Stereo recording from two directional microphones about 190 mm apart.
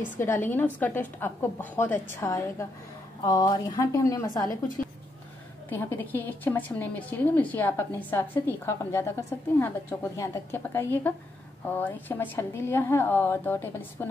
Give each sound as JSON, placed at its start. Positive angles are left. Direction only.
{"t": 0.0, "sound": "a woman's voice", "side_deg": 10}
{"t": 5.7, "sound": "a woman's voice", "side_deg": 10}